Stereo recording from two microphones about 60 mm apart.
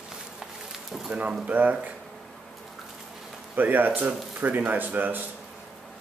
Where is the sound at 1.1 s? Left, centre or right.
Centre.